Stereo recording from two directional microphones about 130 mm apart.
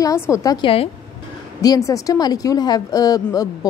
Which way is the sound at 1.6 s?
25° left (ahead or behind).